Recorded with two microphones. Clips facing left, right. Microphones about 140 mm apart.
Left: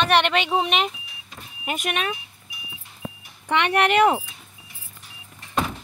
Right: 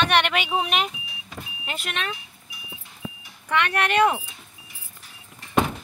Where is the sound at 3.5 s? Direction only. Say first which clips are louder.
Left 3 dB; 25° left (ahead or behind).